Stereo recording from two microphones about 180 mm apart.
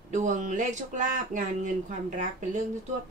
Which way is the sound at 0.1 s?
40° right (ahead or behind).